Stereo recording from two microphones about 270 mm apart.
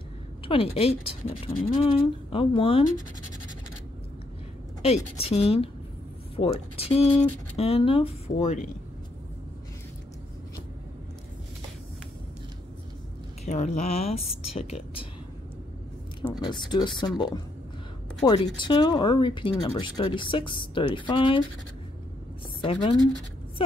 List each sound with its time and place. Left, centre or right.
0.5 s speech: left
2.9 s speech: left
4.8 s speech: left
6.8 s speech: left
13.5 s speech: left
16.3 s speech: centre
22.6 s speech: centre